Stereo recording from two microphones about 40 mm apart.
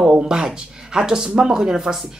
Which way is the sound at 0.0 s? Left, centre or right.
Centre.